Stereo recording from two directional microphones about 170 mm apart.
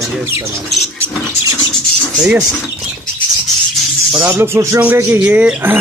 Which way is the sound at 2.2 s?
10° right (ahead or behind).